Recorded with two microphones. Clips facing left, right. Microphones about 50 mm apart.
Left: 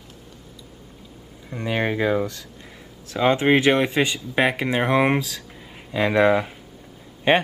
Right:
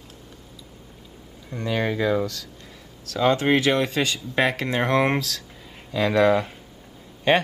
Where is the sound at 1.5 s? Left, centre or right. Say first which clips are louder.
Left 1 dB; left.